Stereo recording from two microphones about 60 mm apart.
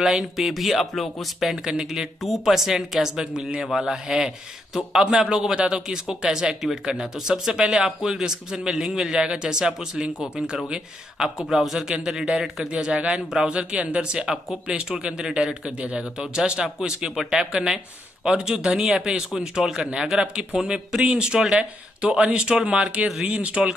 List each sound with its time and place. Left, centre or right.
0.0 s a man's voice: centre
14.2 s speech: centre
14.7 s a man's voice: centre